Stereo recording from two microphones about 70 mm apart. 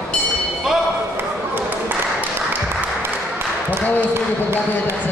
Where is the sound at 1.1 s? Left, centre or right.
Right.